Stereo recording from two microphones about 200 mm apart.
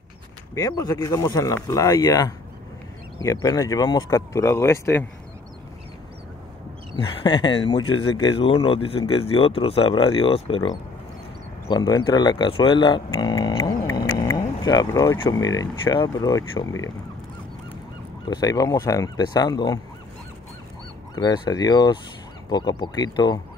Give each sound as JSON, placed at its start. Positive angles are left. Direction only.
{"t": 0.6, "sound": "speech", "side_deg": 20}
{"t": 7.0, "sound": "speech", "side_deg": 25}
{"t": 18.3, "sound": "speech", "side_deg": 20}
{"t": 21.1, "sound": "speech", "side_deg": 20}